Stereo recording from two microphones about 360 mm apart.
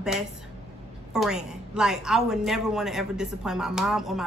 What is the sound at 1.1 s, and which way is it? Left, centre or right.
A woman's voice, centre.